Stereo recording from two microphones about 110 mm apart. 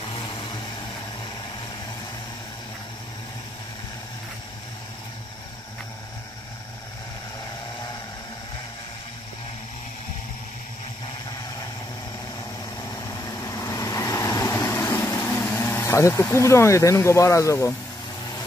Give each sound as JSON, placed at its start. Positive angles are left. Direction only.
{"t": 0.1, "sound": "vehicle", "side_deg": 50}
{"t": 13.1, "sound": "vehicle", "side_deg": 30}